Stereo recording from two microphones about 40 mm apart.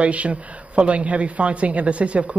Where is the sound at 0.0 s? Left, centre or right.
Right.